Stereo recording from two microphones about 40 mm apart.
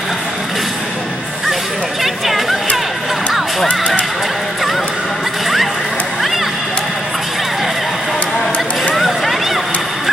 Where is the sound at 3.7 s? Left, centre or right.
Left.